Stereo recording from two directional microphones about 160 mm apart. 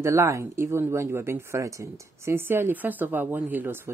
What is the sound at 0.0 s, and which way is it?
Speech, 15° right (ahead or behind).